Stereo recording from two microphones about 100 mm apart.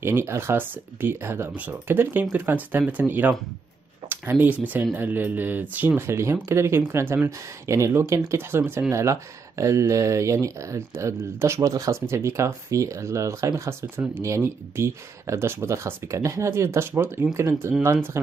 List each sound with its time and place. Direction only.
0.0 s speech: 25° right (ahead or behind)